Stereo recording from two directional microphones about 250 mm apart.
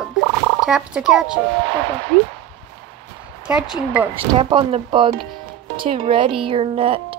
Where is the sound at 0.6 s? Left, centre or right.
Centre.